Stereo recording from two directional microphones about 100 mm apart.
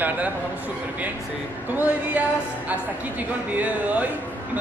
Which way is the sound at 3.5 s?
15° right (ahead or behind).